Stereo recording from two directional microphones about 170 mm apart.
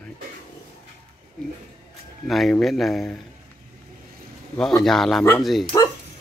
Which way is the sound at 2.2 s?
Centre (ahead or behind).